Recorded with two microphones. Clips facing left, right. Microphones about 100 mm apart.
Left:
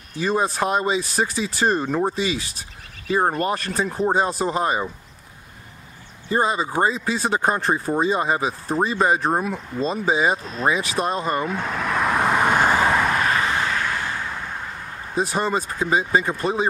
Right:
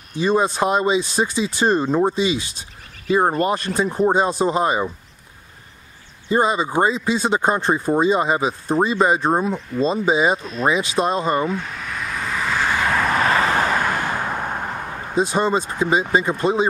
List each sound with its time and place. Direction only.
0.1 s speech: 20° right (ahead or behind)
6.2 s speech: 20° right (ahead or behind)
11.6 s vehicle: 75° left (ahead or behind); by 12.7 s 55° left (ahead or behind)
12.9 s vehicle: centre (ahead or behind)
13.2 s vehicle: 35° right (ahead or behind); by 14.8 s 60° right (ahead or behind)
15.1 s speech: 25° right (ahead or behind)